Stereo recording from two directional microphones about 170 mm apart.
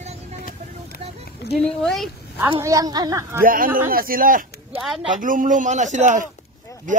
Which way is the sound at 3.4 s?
55° right (ahead or behind).